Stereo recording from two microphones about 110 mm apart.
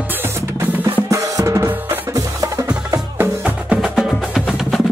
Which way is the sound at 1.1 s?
30° right (ahead or behind).